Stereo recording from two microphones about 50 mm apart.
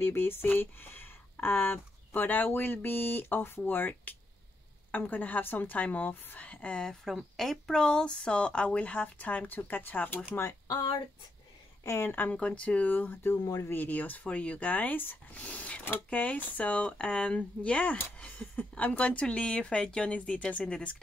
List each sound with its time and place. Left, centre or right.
0.0 s a woman's voice: left
7.3 s speech: centre; by 10.2 s left
12.0 s a woman's voice: left
12.4 s a woman's voice: left
14.2 s a woman's voice: left